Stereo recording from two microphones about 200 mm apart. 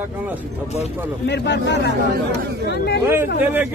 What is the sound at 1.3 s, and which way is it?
Speech, 60° left (ahead or behind).